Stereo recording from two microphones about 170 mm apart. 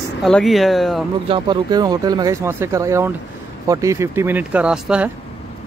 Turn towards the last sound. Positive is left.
turn(degrees=-5)  # may be behind; listen again after turning